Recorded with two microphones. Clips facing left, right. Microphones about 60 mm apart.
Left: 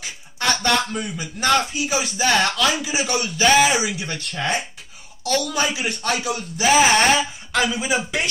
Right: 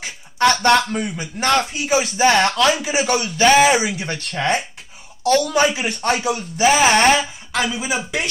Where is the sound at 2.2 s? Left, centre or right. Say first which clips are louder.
Right 3 dB; right.